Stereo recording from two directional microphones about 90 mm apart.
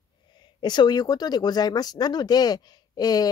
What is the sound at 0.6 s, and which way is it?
Speech, 55° left (ahead or behind).